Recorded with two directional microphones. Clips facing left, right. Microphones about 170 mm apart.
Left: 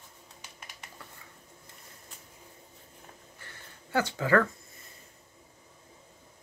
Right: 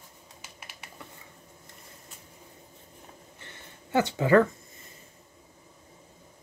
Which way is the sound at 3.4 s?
20° right (ahead or behind).